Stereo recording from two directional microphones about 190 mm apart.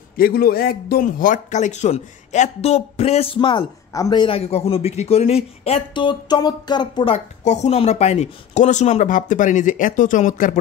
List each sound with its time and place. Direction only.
0.2 s a man's voice: 55° left (ahead or behind); by 7.2 s 25° left (ahead or behind)
7.4 s a man's voice: 35° left (ahead or behind)